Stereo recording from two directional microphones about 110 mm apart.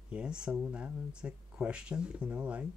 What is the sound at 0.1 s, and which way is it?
Speech, 10° right (ahead or behind).